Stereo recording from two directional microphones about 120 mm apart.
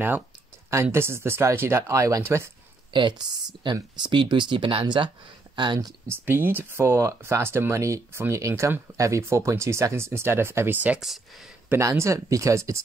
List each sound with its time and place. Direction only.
0.9 s speech: 20° right (ahead or behind)
2.9 s speech: 40° right (ahead or behind)
6.0 s speech: 15° right (ahead or behind)
11.8 s speech: 25° right (ahead or behind)